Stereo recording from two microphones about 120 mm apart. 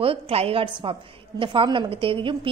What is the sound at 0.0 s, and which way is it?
A woman's voice, 55° right (ahead or behind).